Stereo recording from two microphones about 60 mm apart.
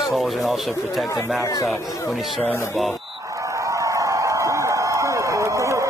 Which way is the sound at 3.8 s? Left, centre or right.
Right.